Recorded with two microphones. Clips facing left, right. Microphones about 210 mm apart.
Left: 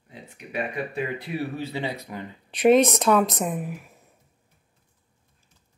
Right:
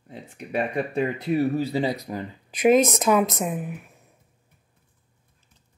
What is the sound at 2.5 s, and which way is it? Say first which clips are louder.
Speech: left 1 dB; 5° right (ahead or behind).